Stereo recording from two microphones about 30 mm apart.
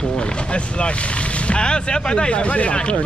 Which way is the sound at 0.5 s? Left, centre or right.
Left.